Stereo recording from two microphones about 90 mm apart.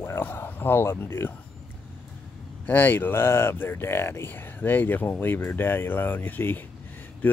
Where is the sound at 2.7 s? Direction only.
20° left (ahead or behind).